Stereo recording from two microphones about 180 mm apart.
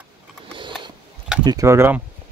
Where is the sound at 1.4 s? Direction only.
20° right (ahead or behind).